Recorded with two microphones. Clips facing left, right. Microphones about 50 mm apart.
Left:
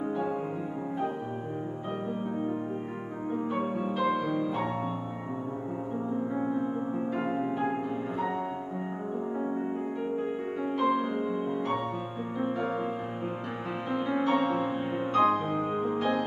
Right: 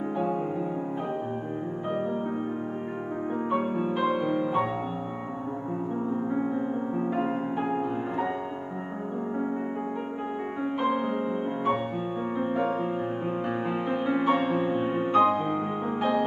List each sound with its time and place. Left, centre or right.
3.5 s music: centre
6.9 s music: centre
10.6 s music: right
13.8 s music: centre